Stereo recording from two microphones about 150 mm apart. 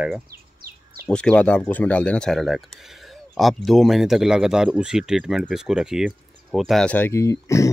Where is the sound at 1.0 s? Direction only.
5° left (ahead or behind); by 7.7 s 20° left (ahead or behind).